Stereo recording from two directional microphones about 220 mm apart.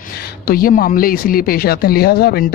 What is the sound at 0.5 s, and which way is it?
Speech, 40° left (ahead or behind).